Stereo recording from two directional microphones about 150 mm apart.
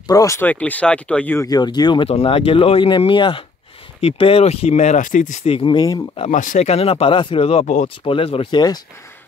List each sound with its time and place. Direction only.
0.1 s speech: 20° left (ahead or behind)
1.5 s speech: 30° left (ahead or behind)
2.0 s speech: 40° left (ahead or behind)
6.2 s speech: 60° left (ahead or behind); by 7.6 s 40° left (ahead or behind)
7.6 s speech: 55° left (ahead or behind)
8.0 s speech: 40° left (ahead or behind)